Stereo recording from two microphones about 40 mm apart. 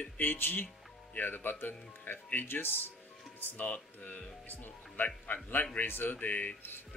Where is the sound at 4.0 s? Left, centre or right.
Left.